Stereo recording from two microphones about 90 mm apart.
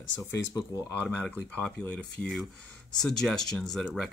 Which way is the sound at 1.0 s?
15° left (ahead or behind).